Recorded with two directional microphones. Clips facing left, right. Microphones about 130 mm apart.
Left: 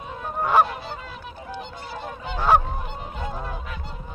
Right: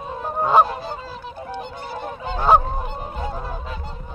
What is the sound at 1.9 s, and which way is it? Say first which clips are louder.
Goose: right 4 dB; 55° right (ahead or behind).